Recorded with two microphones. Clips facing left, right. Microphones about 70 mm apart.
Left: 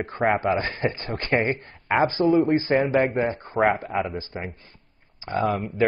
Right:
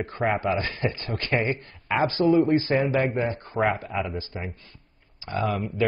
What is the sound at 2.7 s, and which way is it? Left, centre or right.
Speech, left.